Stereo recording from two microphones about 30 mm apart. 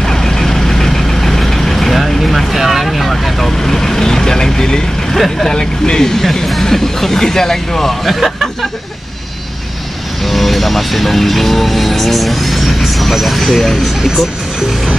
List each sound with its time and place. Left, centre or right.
0.0 s vehicle: centre
3.1 s speech: centre
5.1 s speech: centre
5.5 s speech: left
6.4 s speech: centre
8.0 s speech: centre
10.2 s speech: centre